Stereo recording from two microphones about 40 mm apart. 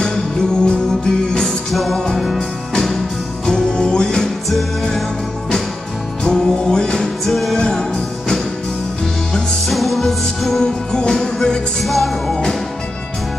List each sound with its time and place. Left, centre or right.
0.0 s music: centre
1.7 s music: centre
6.2 s music: centre
7.2 s music: centre
9.7 s music: centre
10.6 s music: centre
11.8 s music: centre
12.3 s music: centre